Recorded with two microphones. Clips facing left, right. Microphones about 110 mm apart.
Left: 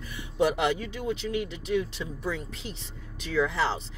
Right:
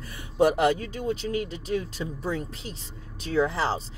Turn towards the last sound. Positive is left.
turn(degrees=-35)  # may be behind; listen again after turning